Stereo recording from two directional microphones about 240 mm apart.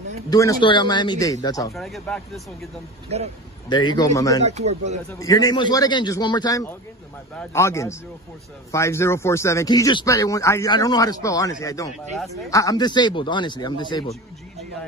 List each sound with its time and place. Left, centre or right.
0.3 s speech: centre
1.8 s speech: centre
3.1 s speech: right
3.6 s speech: centre
4.5 s speech: right
5.2 s speech: centre